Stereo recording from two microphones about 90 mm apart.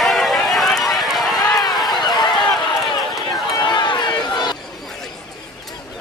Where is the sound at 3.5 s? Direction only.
55° left (ahead or behind).